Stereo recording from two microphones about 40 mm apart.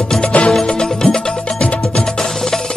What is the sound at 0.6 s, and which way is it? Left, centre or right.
Music, centre.